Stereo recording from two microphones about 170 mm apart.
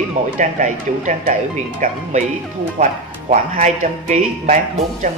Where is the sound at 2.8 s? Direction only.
45° right (ahead or behind).